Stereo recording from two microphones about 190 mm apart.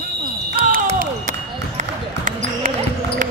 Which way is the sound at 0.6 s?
45° right (ahead or behind).